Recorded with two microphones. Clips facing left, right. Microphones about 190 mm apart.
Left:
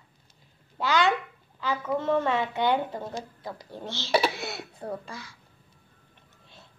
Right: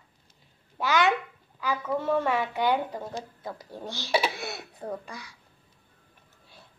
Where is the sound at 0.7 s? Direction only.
20° right (ahead or behind).